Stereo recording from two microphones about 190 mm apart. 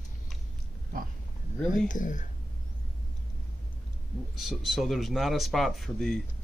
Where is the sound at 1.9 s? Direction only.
40° left (ahead or behind).